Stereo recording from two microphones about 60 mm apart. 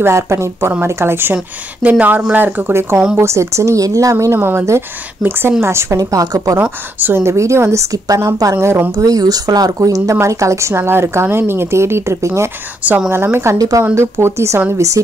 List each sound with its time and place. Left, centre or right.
0.0 s a woman's voice: right
1.8 s speech: right
4.3 s speech: right
5.2 s a woman's voice: centre
5.6 s a woman's voice: right
5.9 s speech: right
6.6 s speech: right
7.2 s speech: right
8.5 s speech: right
8.9 s speech: right
10.2 s speech: right
10.8 s a woman's voice: right
13.6 s speech: right
13.9 s a woman's voice: right